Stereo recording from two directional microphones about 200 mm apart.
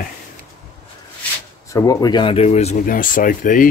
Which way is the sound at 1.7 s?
15° left (ahead or behind).